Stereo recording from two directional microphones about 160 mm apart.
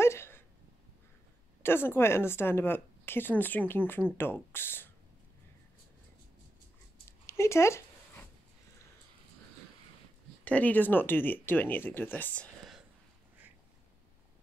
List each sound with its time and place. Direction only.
0.0 s a sound: 15° left (ahead or behind)
1.6 s a woman's voice: 15° left (ahead or behind)
7.1 s dog: 15° left (ahead or behind)
10.4 s a woman's voice: 10° left (ahead or behind)